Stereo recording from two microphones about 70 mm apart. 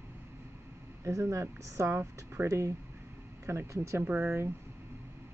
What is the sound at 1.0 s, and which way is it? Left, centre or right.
Speech, right.